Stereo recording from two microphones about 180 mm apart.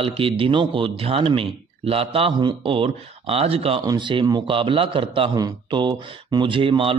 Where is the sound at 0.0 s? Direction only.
30° right (ahead or behind).